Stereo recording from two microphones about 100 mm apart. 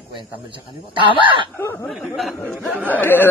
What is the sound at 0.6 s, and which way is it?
Speech, 60° left (ahead or behind).